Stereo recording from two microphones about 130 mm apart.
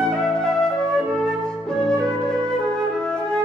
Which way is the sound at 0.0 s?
5° left (ahead or behind).